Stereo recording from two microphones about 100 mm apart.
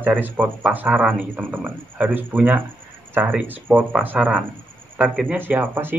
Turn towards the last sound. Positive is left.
turn(degrees=-20)  # may be behind; listen again after turning